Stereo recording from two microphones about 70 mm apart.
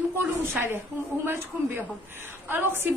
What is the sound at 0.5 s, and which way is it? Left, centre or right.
A woman's voice, right.